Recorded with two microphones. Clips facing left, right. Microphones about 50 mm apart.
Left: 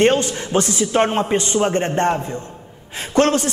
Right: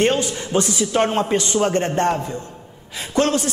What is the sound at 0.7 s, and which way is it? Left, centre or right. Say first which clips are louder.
A man's voice: left 1 dB; left.